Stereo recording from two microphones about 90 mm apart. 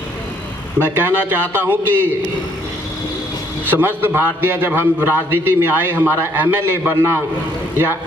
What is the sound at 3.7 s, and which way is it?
A man's voice, 25° right (ahead or behind).